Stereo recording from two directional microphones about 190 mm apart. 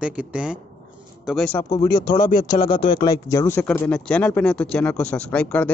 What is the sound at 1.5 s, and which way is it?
Speech, 15° left (ahead or behind).